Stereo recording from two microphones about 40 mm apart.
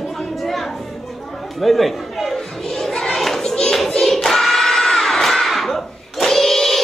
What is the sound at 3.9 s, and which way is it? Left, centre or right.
Crowd, centre.